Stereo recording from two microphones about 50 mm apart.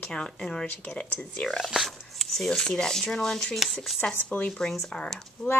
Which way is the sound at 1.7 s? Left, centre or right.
Centre.